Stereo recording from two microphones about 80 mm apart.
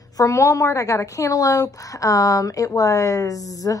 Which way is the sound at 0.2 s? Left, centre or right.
Left.